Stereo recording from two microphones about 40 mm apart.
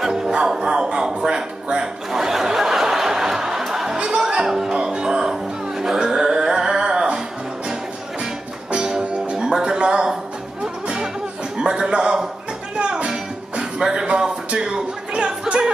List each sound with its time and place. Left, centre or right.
0.0 s music: centre
2.0 s snicker: centre
4.5 s music: centre
8.7 s music: right
11.5 s a sound: centre
12.7 s music: right